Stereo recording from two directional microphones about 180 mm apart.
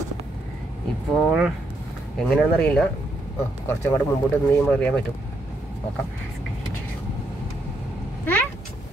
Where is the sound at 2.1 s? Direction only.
5° left (ahead or behind).